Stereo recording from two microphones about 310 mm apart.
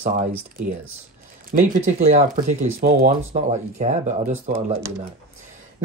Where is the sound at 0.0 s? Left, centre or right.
Right.